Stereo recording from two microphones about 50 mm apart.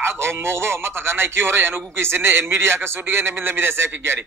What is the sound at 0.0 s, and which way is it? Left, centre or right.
A man's voice, right.